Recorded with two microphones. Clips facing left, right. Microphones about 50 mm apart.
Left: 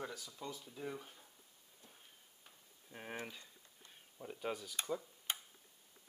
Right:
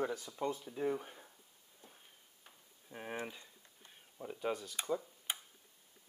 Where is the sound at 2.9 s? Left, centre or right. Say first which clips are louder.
Right 4 dB; centre.